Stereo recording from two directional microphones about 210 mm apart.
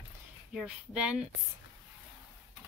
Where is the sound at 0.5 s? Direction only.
5° right (ahead or behind).